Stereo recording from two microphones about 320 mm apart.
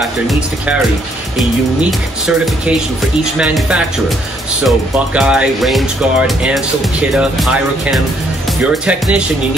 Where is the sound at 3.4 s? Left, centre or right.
Centre.